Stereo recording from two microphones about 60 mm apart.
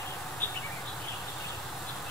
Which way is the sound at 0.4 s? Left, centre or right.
Left.